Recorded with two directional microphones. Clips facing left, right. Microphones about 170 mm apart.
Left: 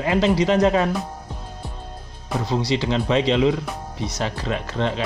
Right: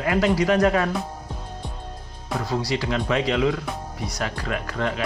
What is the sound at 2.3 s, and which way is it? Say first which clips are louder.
Speech: left 3 dB; 25° left (ahead or behind).